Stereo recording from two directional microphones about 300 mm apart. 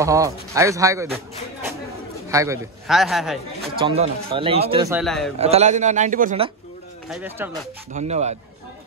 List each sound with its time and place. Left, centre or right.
0.0 s a man's voice: centre
2.2 s a man's voice: centre
3.8 s a man's voice: centre
4.9 s a man's voice: centre
5.4 s a man's voice: right
7.1 s a man's voice: centre
7.9 s a man's voice: right